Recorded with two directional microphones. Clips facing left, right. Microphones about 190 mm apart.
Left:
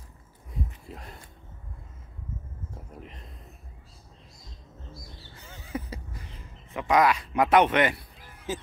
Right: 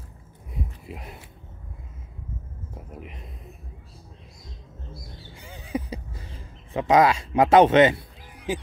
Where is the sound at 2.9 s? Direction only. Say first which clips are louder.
Right 4 dB; 10° right (ahead or behind).